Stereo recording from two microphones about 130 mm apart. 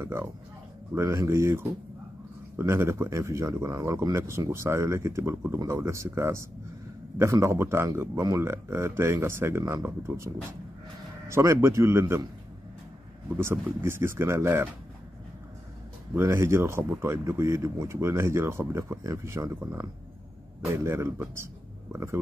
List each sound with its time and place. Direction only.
0.0 s speech: 20° right (ahead or behind)
13.7 s speech: 20° right (ahead or behind)
16.2 s speech: 20° right (ahead or behind)